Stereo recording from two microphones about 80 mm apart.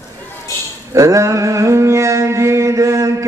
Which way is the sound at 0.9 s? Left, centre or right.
Right.